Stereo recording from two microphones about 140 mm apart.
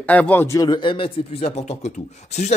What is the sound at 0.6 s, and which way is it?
Speech, 30° left (ahead or behind).